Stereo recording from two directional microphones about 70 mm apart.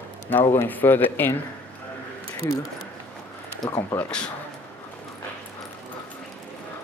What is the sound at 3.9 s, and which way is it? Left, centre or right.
Speech, centre.